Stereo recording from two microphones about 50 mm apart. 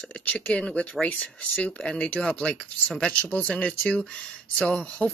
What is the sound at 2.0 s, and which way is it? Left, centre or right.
Speech, left.